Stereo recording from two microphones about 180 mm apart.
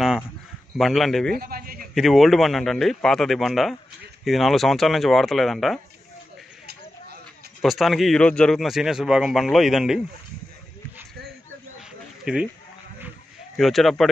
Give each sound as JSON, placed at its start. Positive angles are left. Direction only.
{"t": 0.7, "sound": "a man's voice", "side_deg": 0}
{"t": 1.3, "sound": "a sound", "side_deg": -55}
{"t": 2.0, "sound": "a man's voice", "side_deg": 0}
{"t": 6.6, "sound": "a sound", "side_deg": -60}
{"t": 7.6, "sound": "a man's voice", "side_deg": 0}
{"t": 12.3, "sound": "a man's voice", "side_deg": -5}
{"t": 13.6, "sound": "a man's voice", "side_deg": 0}